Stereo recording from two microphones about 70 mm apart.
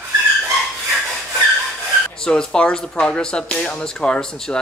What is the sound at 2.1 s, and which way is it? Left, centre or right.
Speech, centre.